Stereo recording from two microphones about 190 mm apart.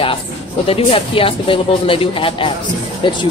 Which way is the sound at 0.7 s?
30° left (ahead or behind).